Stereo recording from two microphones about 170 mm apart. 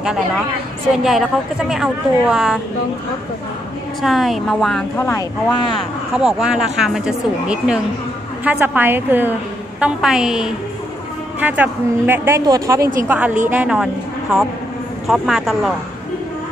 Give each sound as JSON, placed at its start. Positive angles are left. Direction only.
{"t": 1.0, "sound": "speech", "side_deg": 0}
{"t": 4.0, "sound": "speech", "side_deg": 0}
{"t": 4.9, "sound": "speech", "side_deg": 15}
{"t": 5.5, "sound": "speech", "side_deg": 25}
{"t": 6.1, "sound": "a woman's voice", "side_deg": -5}
{"t": 13.1, "sound": "a woman's voice", "side_deg": -10}
{"t": 15.0, "sound": "speech", "side_deg": 0}